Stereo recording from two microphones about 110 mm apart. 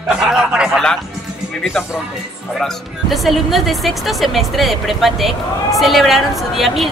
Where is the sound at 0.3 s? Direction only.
5° right (ahead or behind).